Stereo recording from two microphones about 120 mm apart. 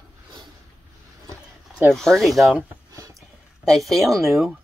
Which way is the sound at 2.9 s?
25° right (ahead or behind).